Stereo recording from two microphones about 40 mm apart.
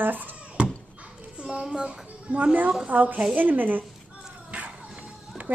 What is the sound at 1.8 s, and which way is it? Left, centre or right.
A woman's voice, right.